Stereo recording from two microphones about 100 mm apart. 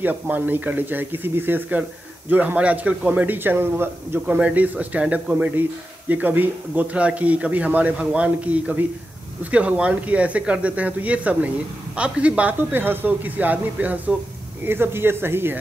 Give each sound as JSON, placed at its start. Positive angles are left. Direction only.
{"t": 0.0, "sound": "speech", "side_deg": -20}